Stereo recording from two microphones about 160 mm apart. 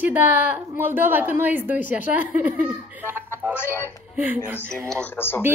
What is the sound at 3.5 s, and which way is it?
Speech, 15° left (ahead or behind).